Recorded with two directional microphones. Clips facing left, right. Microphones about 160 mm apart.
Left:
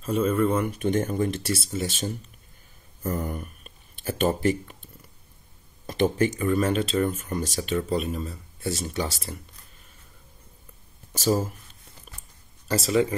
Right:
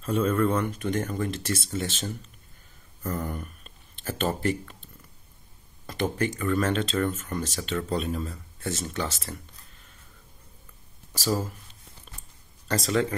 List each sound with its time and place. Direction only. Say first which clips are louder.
0.0 s speech: left 1 dB; centre (ahead or behind)
0.7 s speech: left 4 dB; 20° left (ahead or behind)
1.4 s speech: left 2 dB; 10° left (ahead or behind)
3.0 s a sound: left 2 dB; 20° left (ahead or behind)
4.3 s speech: left 2 dB; 20° left (ahead or behind)
5.9 s speech: left 5 dB; 20° left (ahead or behind)
12.6 s speech: left 3 dB; 5° left (ahead or behind)